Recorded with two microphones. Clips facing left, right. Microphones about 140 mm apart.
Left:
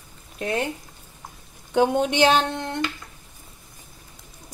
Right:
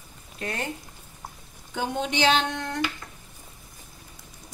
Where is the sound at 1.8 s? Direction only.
55° left (ahead or behind).